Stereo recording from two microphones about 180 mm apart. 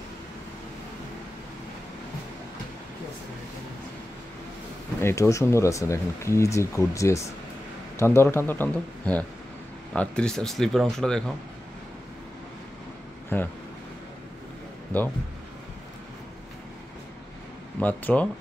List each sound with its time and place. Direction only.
5.0 s speech: 15° left (ahead or behind)
13.3 s speech: 10° left (ahead or behind)
17.7 s speech: 10° left (ahead or behind)